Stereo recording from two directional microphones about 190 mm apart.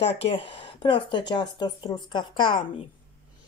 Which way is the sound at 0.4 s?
25° left (ahead or behind).